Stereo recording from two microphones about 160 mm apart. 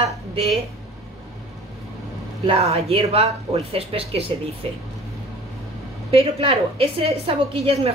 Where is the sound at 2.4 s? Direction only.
35° right (ahead or behind).